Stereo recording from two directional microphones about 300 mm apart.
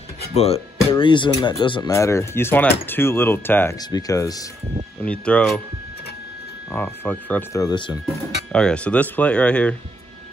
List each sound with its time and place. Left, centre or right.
0.3 s speech: left; by 5.6 s centre
6.7 s speech: centre
8.5 s speech: centre